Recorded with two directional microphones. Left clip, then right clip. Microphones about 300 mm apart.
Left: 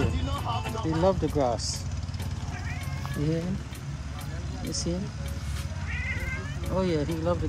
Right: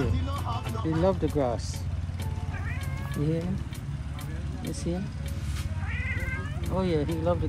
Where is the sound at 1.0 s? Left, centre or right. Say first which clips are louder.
Left 2 dB; centre.